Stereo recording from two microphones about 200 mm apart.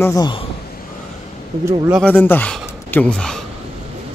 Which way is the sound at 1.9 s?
5° left (ahead or behind).